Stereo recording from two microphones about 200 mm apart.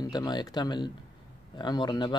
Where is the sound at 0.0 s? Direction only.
20° left (ahead or behind).